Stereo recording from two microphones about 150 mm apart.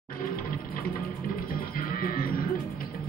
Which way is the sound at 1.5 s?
70° left (ahead or behind).